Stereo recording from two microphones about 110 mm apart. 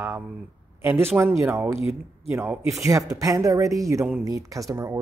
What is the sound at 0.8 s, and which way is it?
Speech, 20° right (ahead or behind).